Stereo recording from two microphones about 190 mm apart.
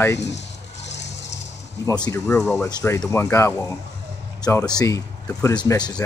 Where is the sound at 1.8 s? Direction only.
20° left (ahead or behind).